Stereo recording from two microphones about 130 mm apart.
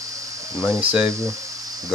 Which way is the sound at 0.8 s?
10° right (ahead or behind).